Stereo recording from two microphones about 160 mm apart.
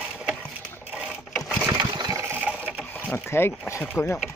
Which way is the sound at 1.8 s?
25° right (ahead or behind).